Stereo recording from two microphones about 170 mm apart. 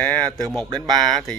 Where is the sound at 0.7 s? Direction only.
25° right (ahead or behind).